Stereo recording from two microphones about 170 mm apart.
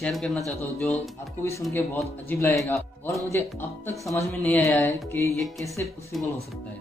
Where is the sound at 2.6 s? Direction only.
20° left (ahead or behind); by 6.3 s centre (ahead or behind).